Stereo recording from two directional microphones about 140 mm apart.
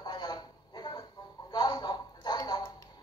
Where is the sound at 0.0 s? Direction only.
35° left (ahead or behind).